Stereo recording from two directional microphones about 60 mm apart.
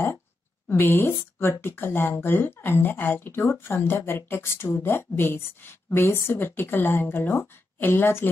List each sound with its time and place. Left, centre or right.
0.7 s speech: left